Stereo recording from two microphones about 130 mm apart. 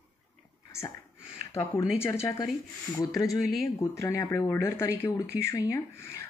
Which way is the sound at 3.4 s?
Centre (ahead or behind).